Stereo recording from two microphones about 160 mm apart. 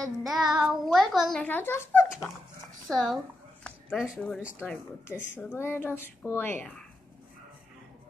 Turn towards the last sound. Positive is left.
turn(degrees=10)  # may be behind; listen again after turning